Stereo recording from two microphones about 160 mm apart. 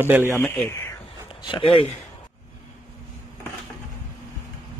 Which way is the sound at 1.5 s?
35° left (ahead or behind).